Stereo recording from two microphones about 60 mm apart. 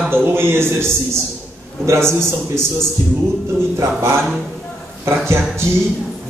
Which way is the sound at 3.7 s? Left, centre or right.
Right.